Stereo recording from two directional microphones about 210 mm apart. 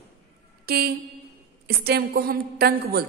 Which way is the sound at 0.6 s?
45° right (ahead or behind).